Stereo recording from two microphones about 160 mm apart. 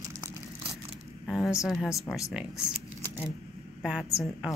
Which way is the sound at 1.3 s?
5° right (ahead or behind).